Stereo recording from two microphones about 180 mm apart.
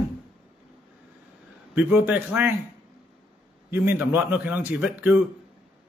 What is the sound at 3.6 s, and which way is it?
Speech, 10° right (ahead or behind).